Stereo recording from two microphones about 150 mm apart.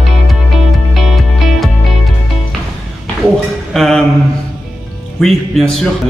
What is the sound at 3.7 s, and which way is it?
Mantra, centre (ahead or behind).